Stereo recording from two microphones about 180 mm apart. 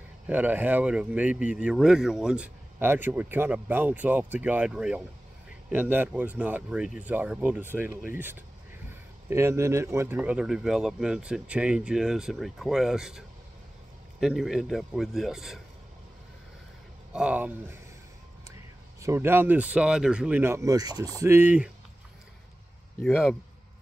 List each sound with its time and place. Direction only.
0.3 s speech: 10° right (ahead or behind)
14.2 s speech: centre (ahead or behind)
17.1 s speech: 5° right (ahead or behind)
18.9 s speech: 15° right (ahead or behind)
23.0 s speech: centre (ahead or behind)